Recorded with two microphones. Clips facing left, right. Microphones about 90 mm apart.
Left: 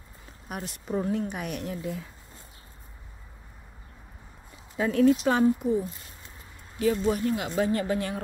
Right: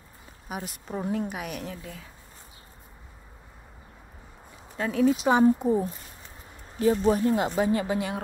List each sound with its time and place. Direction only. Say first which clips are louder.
0.5 s speech: left 2 dB; 5° right (ahead or behind)
4.7 s speech: left 2 dB; centre (ahead or behind)
5.4 s speech: right 2 dB; 30° right (ahead or behind)
6.8 s speech: right 3 dB; 35° right (ahead or behind)
7.6 s speech: right 1 dB; 15° right (ahead or behind)